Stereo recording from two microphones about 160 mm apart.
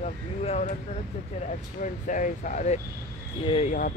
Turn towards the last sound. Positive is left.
turn(degrees=35)  # may be behind; listen again after turning